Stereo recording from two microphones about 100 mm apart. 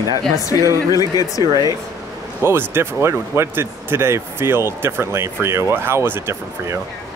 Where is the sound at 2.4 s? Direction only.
25° right (ahead or behind).